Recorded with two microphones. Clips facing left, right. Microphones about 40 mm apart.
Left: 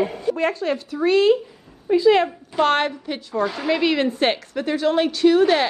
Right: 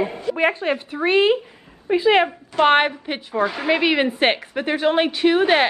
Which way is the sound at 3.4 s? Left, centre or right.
Centre.